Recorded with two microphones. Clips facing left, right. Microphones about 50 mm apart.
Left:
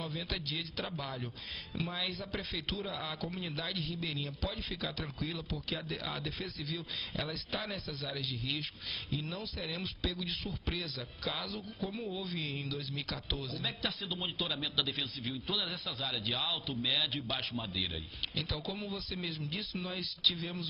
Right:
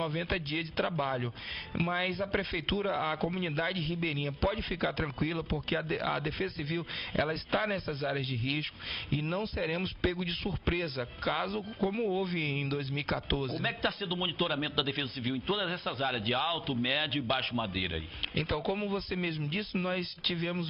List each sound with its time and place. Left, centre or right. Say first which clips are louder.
0.0 s a man's voice: right 7 dB; right
11.8 s speech: right 9 dB; right
12.2 s a man's voice: right 7 dB; right
18.3 s speech: right 8 dB; right